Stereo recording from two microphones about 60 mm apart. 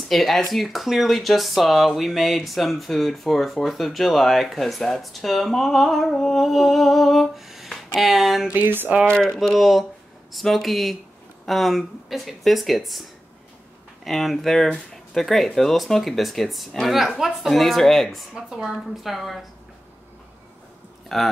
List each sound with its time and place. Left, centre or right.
0.1 s speech: centre
8.5 s speech: right
9.4 s speech: centre
14.0 s speech: centre
18.3 s speech: centre
21.1 s speech: centre